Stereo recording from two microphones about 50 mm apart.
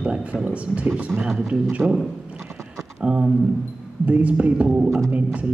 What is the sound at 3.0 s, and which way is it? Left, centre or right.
A man's voice, centre.